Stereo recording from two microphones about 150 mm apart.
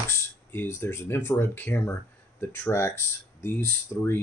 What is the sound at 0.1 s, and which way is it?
Speech, 15° left (ahead or behind).